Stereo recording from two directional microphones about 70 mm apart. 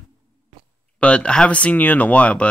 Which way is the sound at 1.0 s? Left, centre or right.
Centre.